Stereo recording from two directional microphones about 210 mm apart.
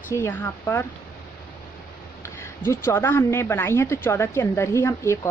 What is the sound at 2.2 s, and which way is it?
Speech, 15° left (ahead or behind).